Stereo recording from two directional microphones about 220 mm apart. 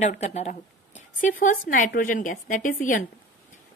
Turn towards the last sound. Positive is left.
turn(degrees=35)  # may be behind; listen again after turning